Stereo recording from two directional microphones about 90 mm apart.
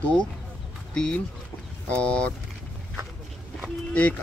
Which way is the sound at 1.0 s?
10° left (ahead or behind).